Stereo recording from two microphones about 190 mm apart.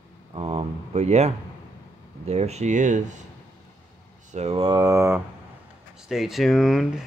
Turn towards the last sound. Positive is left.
turn(degrees=0)  # may be behind; listen again after turning